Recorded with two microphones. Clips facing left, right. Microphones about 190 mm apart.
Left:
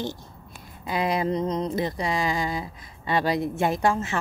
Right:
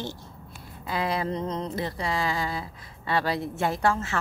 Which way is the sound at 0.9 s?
15° left (ahead or behind).